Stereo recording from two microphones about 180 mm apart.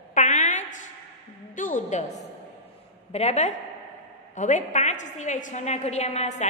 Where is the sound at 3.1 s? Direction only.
40° left (ahead or behind).